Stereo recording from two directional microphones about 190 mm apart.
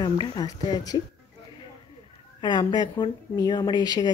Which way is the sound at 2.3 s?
25° left (ahead or behind).